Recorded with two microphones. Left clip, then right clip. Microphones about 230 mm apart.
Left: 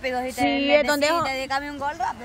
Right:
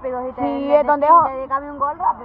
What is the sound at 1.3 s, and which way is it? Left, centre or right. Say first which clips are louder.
Speech: right 3 dB; left.